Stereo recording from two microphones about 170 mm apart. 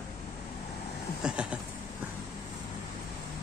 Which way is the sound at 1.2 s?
5° right (ahead or behind).